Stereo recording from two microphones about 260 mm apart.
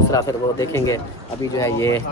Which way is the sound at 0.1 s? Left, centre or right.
Centre.